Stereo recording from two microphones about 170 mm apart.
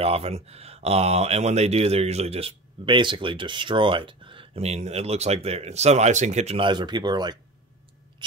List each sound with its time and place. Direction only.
0.0 s speech: 35° right (ahead or behind)